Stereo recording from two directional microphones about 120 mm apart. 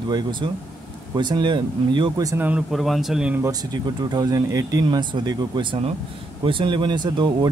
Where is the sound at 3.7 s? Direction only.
35° right (ahead or behind).